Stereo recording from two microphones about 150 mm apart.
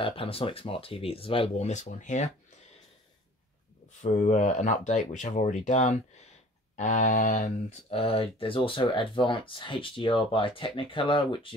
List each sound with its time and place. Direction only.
0.0 s speech: 35° left (ahead or behind)
1.7 s speech: 55° left (ahead or behind)
4.0 s speech: 55° left (ahead or behind)
7.9 s speech: 40° left (ahead or behind)